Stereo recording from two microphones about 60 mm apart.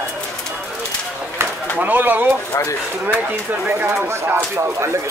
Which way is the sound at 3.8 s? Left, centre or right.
Right.